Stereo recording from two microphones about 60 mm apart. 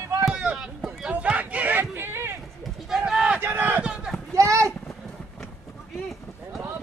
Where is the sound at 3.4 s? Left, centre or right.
Right.